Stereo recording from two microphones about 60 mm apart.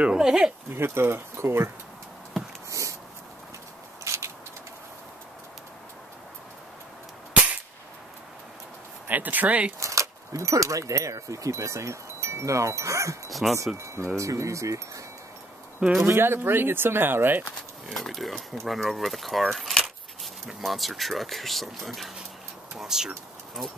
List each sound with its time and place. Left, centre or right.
0.0 s speech: centre
0.7 s speech: right
2.7 s dog: right
4.0 s a sound: right
9.0 s speech: right
9.8 s speech: right
13.3 s speech: centre
14.1 s speech: right
16.0 s speech: right
17.5 s speech: centre